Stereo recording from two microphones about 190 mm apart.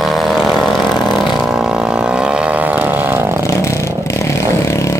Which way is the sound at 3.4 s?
15° left (ahead or behind).